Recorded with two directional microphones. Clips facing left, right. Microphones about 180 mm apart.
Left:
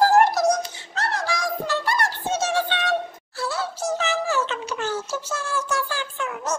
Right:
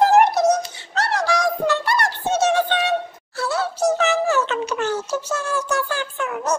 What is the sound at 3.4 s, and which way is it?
Music, 65° right (ahead or behind).